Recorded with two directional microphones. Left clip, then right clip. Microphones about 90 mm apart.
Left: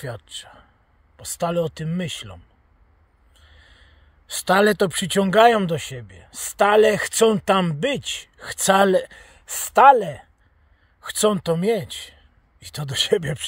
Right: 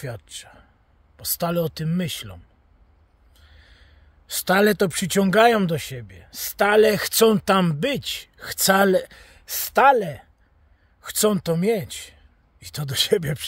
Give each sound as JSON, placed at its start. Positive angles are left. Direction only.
{"t": 0.0, "sound": "speech", "side_deg": -15}
{"t": 1.1, "sound": "speech", "side_deg": -25}
{"t": 3.3, "sound": "a sound", "side_deg": -20}
{"t": 5.2, "sound": "speech", "side_deg": -20}
{"t": 6.3, "sound": "speech", "side_deg": -25}
{"t": 11.7, "sound": "speech", "side_deg": -5}
{"t": 12.0, "sound": "a sound", "side_deg": -15}
{"t": 12.7, "sound": "speech", "side_deg": -20}